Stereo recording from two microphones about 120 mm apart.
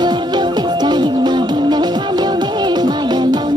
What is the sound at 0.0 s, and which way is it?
Music, 35° right (ahead or behind).